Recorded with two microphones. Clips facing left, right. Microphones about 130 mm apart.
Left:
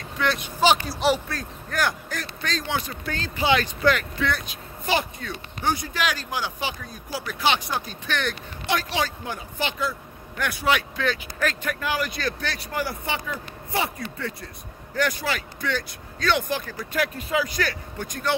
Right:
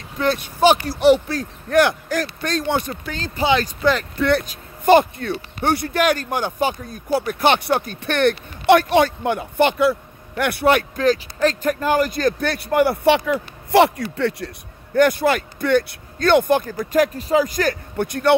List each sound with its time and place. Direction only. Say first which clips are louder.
0.6 s speech: right 5 dB; 55° right (ahead or behind)
3.6 s speech: right 3 dB; 40° right (ahead or behind)
4.5 s speech: right 12 dB; 50° right (ahead or behind); by 14.5 s 75° right (ahead or behind)
15.0 s speech: right 10 dB; 55° right (ahead or behind)
18.0 s speech: right 9 dB; 65° right (ahead or behind)